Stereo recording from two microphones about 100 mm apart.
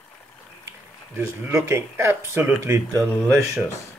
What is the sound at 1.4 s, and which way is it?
Speech, 25° right (ahead or behind).